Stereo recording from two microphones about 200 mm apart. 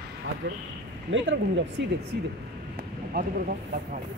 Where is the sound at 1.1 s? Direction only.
65° right (ahead or behind).